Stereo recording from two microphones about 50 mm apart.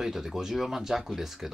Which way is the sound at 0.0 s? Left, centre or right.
Centre.